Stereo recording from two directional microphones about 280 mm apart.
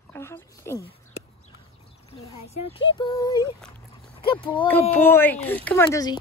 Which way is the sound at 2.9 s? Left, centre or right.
Centre.